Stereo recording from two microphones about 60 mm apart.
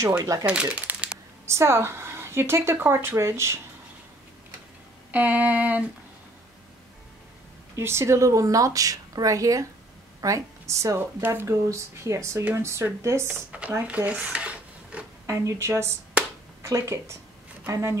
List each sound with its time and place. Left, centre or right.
0.2 s a woman's voice: right
0.5 s speech: right
1.4 s a woman's voice: right
5.1 s a sound: right
7.7 s a woman's voice: right
13.5 s a sound: right
13.8 s speech: right
15.2 s speech: right
16.6 s speech: right